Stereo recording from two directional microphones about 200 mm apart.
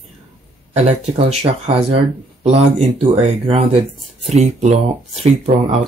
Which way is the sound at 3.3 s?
35° right (ahead or behind).